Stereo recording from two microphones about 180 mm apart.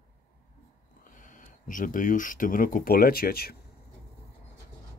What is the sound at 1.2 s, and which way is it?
Speech, 45° left (ahead or behind).